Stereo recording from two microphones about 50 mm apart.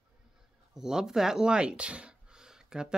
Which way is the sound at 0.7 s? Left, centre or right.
Centre.